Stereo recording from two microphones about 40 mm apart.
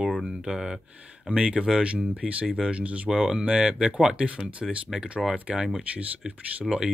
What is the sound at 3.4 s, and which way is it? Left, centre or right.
Speech, right.